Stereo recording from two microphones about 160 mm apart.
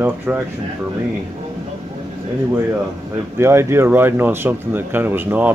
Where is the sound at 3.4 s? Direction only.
15° right (ahead or behind).